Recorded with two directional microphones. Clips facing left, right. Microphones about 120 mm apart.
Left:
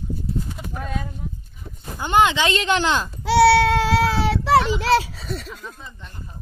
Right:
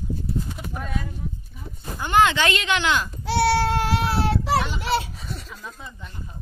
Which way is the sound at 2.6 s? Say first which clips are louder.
Left 2 dB; 35° left (ahead or behind).